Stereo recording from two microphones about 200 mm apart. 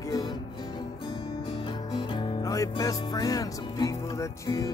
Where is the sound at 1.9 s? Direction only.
20° left (ahead or behind).